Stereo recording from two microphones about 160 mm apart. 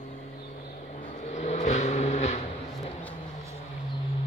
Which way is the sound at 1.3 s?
45° left (ahead or behind).